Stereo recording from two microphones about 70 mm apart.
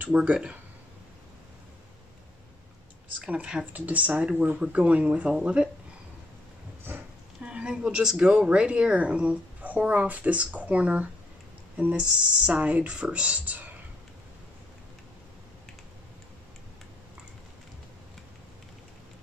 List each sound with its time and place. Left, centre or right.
0.0 s speech: centre
3.2 s speech: centre
6.9 s speech: right
7.4 s speech: centre